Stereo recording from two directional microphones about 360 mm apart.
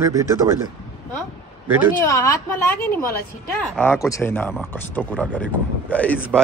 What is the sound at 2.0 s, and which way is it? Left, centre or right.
A woman's voice, centre.